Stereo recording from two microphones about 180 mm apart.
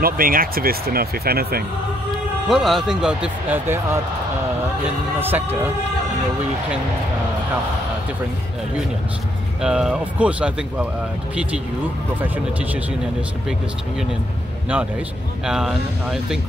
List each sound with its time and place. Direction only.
0.0 s speech: 50° right (ahead or behind)
2.4 s speech: centre (ahead or behind)
5.2 s speech: 10° right (ahead or behind)
9.6 s speech: 5° right (ahead or behind)
15.4 s speech: 5° right (ahead or behind)